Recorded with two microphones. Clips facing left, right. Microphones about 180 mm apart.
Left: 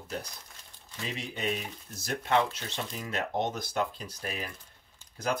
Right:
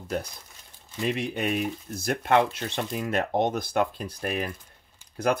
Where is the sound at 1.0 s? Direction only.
60° right (ahead or behind).